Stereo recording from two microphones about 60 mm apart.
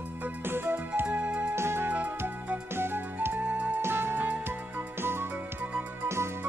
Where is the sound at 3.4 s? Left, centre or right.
Right.